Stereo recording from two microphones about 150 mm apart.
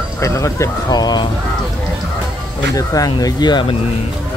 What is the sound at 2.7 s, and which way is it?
Speech, 25° left (ahead or behind).